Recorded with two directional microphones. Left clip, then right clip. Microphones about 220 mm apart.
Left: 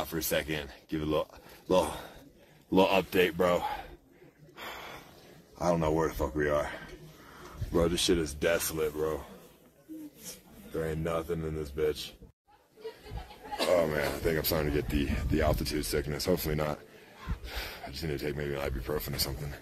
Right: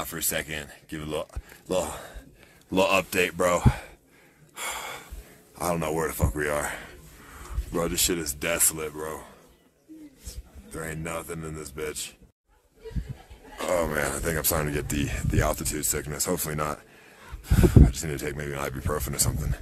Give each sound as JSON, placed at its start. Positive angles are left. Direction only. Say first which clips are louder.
{"t": 0.0, "sound": "speech", "louder": "right 1 dB", "side_deg": -10}
{"t": 4.6, "sound": "gasp", "louder": "right 8 dB", "side_deg": -30}
{"t": 5.6, "sound": "speech", "louder": "right 1 dB", "side_deg": -25}
{"t": 7.7, "sound": "speech", "louder": "even", "side_deg": -10}
{"t": 10.8, "sound": "a man's voice", "louder": "left 1 dB", "side_deg": 0}
{"t": 13.7, "sound": "speech", "louder": "right 2 dB", "side_deg": -20}